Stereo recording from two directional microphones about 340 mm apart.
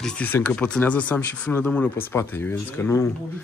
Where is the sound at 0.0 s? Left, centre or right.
Centre.